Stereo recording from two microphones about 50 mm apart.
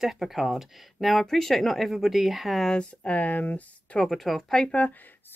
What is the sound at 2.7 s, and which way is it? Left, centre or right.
Speech, left.